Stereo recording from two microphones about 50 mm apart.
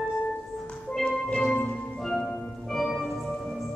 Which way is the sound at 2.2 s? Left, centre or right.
Left.